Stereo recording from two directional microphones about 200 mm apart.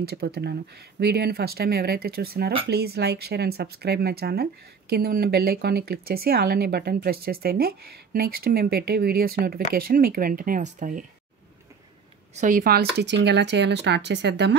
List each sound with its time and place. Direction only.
0.0 s speech: 50° right (ahead or behind)
12.4 s speech: 45° right (ahead or behind)